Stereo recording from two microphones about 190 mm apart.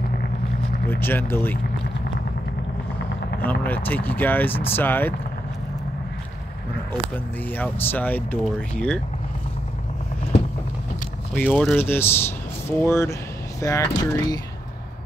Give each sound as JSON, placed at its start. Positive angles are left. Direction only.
{"t": 0.8, "sound": "speech", "side_deg": 10}
{"t": 3.4, "sound": "speech", "side_deg": 10}
{"t": 7.5, "sound": "speech", "side_deg": 10}
{"t": 11.3, "sound": "speech", "side_deg": 10}